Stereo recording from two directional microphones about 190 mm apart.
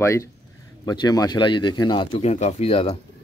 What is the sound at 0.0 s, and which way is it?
Speech, 15° left (ahead or behind).